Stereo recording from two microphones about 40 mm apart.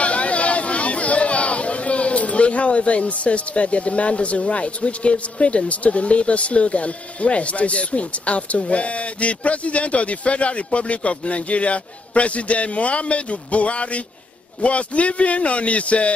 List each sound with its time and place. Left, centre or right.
0.0 s speech: left